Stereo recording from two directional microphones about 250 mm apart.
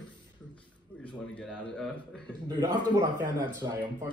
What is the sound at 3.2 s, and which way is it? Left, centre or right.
Speech, centre.